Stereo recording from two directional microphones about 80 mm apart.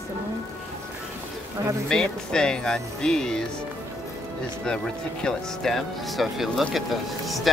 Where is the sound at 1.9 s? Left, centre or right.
Centre.